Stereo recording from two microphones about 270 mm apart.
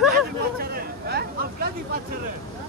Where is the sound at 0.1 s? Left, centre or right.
Right.